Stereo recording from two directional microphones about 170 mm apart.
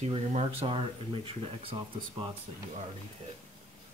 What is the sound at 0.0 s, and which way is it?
Speech, 40° right (ahead or behind).